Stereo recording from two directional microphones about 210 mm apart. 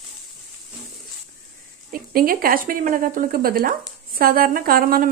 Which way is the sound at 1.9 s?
45° right (ahead or behind).